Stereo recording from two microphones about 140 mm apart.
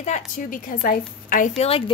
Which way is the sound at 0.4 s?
75° left (ahead or behind).